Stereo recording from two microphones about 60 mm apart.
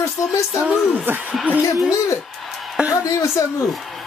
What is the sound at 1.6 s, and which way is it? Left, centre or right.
Speech, left.